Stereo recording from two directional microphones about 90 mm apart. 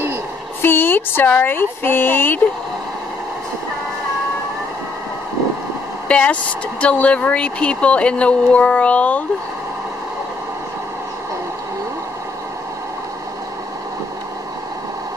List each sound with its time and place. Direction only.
0.6 s speech: 25° left (ahead or behind)
6.0 s speech: 10° left (ahead or behind)